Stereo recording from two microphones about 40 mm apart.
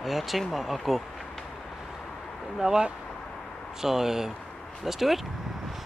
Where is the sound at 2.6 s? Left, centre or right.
Centre.